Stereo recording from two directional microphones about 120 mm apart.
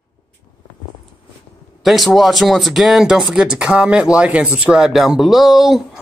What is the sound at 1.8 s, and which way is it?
Speech, centre (ahead or behind).